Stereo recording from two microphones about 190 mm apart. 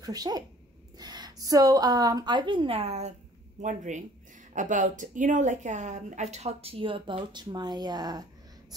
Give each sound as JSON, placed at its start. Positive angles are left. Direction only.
{"t": 0.0, "sound": "a woman's voice", "side_deg": -20}